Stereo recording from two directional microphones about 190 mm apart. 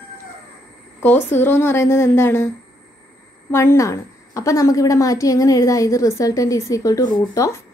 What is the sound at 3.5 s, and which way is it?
A woman's voice, 15° left (ahead or behind).